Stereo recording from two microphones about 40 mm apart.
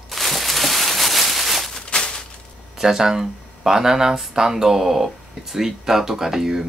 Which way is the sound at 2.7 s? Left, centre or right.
Centre.